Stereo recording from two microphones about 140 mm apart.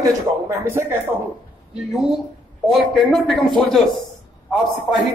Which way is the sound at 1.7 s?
5° right (ahead or behind).